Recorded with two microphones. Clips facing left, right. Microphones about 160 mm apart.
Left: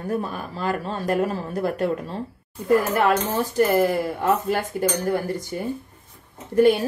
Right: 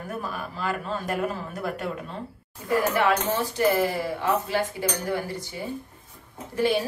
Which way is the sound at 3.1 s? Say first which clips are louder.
Left 2 dB; 45° left (ahead or behind).